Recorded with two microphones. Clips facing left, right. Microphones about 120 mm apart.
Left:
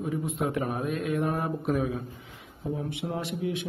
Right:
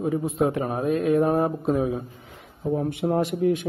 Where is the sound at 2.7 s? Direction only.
50° right (ahead or behind).